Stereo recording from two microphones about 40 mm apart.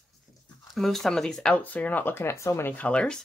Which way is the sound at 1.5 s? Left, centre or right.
Left.